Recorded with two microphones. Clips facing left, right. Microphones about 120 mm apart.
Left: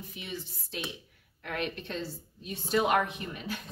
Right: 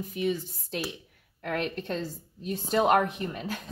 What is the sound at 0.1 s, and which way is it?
A woman's voice, 45° right (ahead or behind).